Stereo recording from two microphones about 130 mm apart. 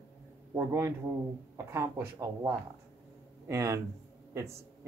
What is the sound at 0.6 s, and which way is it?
Speech, 20° right (ahead or behind).